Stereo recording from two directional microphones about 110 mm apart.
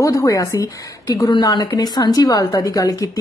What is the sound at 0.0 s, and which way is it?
A woman's voice, 30° left (ahead or behind).